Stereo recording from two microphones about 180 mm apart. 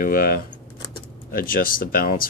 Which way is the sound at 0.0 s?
50° left (ahead or behind).